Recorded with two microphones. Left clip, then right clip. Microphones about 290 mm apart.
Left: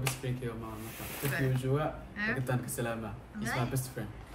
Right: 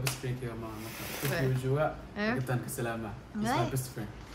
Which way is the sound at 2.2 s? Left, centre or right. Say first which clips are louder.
Right 1 dB; centre.